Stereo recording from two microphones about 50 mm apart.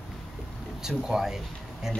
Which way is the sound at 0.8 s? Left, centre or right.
Centre.